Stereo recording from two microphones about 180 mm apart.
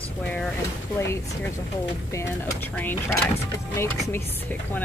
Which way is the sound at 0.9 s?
15° left (ahead or behind).